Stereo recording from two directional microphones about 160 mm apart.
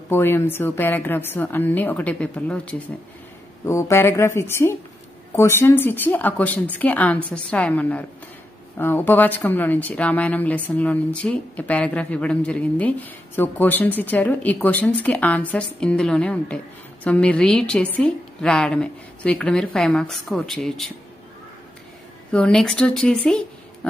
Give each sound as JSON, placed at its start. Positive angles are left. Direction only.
{"t": 0.1, "sound": "a woman's voice", "side_deg": 15}
{"t": 22.3, "sound": "a woman's voice", "side_deg": 5}
{"t": 23.2, "sound": "a sound", "side_deg": 5}